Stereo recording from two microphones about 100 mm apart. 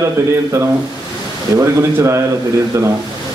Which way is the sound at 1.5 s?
30° right (ahead or behind).